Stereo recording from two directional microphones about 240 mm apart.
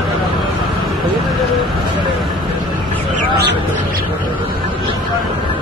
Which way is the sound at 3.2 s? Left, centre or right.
Right.